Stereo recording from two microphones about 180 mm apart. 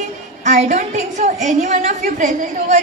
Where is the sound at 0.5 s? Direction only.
40° right (ahead or behind).